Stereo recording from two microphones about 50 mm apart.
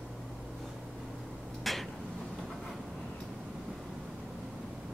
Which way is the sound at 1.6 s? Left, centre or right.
Centre.